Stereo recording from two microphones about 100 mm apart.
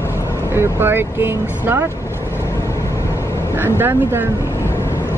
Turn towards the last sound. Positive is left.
turn(degrees=-20)  # may be behind; listen again after turning